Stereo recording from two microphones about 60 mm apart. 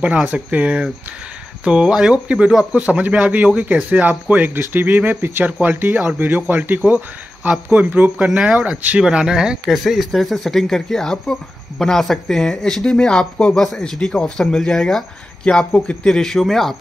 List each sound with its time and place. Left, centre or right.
0.5 s speech: right
8.3 s speech: centre
15.4 s speech: centre